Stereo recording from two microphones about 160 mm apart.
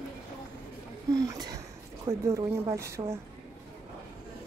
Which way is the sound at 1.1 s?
20° right (ahead or behind).